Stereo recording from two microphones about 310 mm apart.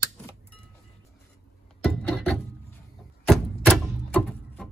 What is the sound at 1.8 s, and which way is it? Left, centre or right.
Wood, centre.